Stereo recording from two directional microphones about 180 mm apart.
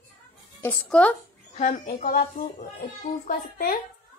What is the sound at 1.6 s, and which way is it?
A woman's voice, 45° left (ahead or behind).